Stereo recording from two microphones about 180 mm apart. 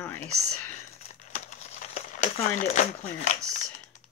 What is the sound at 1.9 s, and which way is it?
Speech, 40° left (ahead or behind).